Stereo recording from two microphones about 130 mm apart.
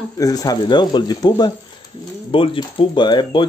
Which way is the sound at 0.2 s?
30° left (ahead or behind).